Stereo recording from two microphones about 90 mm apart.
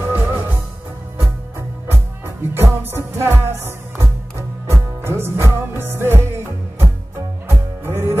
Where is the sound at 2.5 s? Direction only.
30° right (ahead or behind).